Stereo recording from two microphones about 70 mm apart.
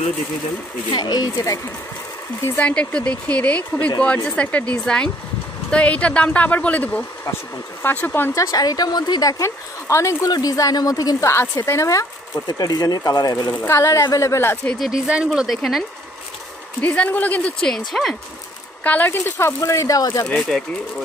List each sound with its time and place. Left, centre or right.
0.9 s speech: left
2.5 s speech: centre
8.4 s a woman's voice: left
9.4 s speech: left
10.2 s speech: left
11.2 s speech: left
12.4 s speech: left
13.7 s speech: left
15.2 s speech: centre
16.8 s speech: centre
17.6 s speech: centre
18.9 s speech: left
19.6 s speech: left
20.3 s speech: centre